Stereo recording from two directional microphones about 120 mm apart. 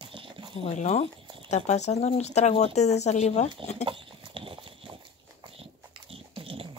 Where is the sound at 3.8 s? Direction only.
45° right (ahead or behind).